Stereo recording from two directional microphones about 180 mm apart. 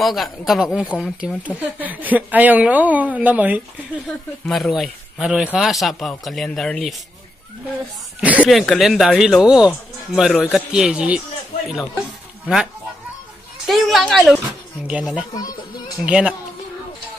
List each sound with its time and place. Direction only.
0.0 s speech: centre (ahead or behind)
0.8 s speech: 10° left (ahead or behind)
1.2 s a woman's voice: 5° right (ahead or behind)
8.4 s speech: centre (ahead or behind)
13.7 s speech: centre (ahead or behind)
15.3 s speech: 20° left (ahead or behind)
16.1 s a woman's voice: 5° right (ahead or behind)